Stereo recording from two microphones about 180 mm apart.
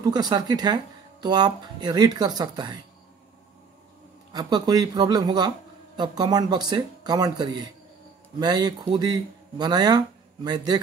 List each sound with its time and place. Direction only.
0.0 s speech: 25° right (ahead or behind)
4.3 s speech: 25° right (ahead or behind)